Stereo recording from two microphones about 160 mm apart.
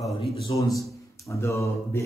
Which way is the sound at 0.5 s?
30° left (ahead or behind).